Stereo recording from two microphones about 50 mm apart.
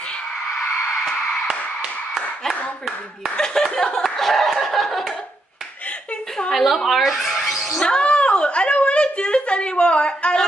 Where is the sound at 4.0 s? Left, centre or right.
Centre.